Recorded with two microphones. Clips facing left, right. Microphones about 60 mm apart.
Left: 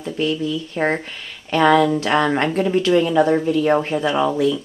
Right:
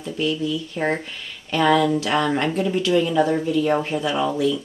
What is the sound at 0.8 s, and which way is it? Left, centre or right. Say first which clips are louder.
Speech: left 4 dB; left.